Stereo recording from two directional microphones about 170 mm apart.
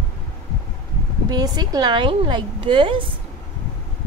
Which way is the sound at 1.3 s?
25° right (ahead or behind).